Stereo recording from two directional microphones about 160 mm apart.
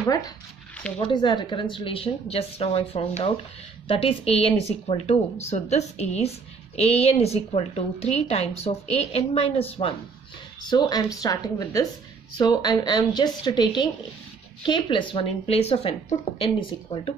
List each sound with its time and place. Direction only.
0.9 s a woman's voice: 30° left (ahead or behind)
10.7 s a woman's voice: 25° left (ahead or behind)